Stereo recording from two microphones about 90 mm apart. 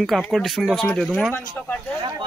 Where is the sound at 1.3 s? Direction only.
20° left (ahead or behind).